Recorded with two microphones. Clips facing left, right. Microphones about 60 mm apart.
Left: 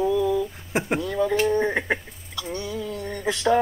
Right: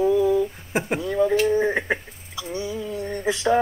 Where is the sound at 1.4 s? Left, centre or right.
Centre.